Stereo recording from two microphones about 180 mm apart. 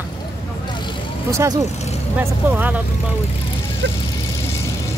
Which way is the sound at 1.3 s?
15° right (ahead or behind).